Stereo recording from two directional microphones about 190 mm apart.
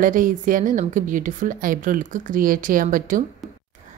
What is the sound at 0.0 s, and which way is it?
A woman's voice, 45° right (ahead or behind).